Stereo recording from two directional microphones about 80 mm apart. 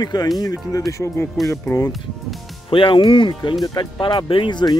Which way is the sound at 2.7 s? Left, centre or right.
Left.